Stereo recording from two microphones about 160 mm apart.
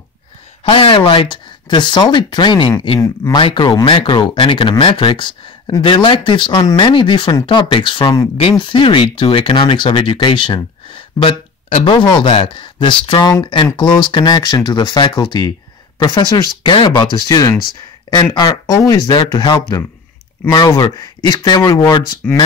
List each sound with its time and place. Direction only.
0.7 s speech: 35° left (ahead or behind)